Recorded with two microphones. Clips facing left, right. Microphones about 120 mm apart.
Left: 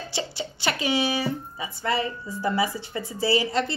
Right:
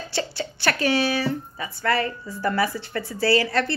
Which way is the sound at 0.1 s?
20° left (ahead or behind).